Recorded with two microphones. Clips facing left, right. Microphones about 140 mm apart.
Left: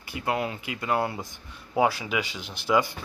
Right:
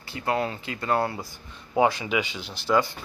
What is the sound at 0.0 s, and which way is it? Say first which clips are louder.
Speech: right 2 dB; 15° left (ahead or behind).